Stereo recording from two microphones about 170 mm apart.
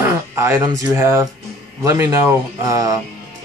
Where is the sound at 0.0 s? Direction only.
15° right (ahead or behind).